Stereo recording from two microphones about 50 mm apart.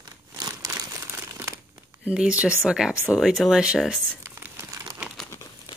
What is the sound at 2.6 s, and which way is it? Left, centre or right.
Speech, centre.